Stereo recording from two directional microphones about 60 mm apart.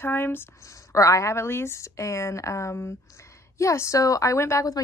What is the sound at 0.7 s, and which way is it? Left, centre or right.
A woman's voice, left.